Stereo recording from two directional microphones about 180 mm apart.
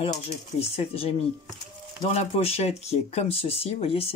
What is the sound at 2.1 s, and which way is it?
Speech, 35° left (ahead or behind).